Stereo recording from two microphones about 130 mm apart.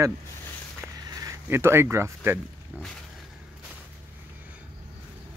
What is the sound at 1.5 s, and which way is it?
Speech, 20° right (ahead or behind).